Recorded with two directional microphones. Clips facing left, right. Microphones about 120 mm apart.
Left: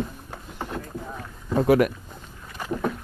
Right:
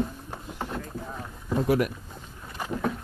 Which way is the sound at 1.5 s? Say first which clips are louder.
Left 5 dB; 80° left.